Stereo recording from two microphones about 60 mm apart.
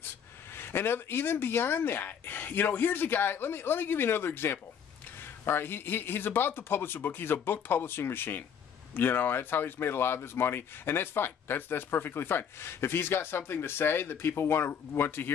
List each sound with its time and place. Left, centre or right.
0.6 s speech: left